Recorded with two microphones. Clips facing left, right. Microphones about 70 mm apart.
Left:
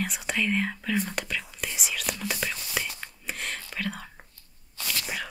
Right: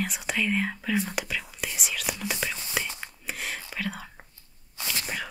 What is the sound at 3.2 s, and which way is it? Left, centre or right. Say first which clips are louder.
Whispering: even; centre.